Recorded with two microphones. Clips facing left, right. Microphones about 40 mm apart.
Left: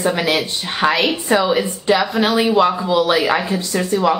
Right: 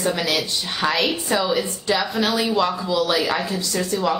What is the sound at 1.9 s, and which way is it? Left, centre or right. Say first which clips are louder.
Speech: left 3 dB; centre.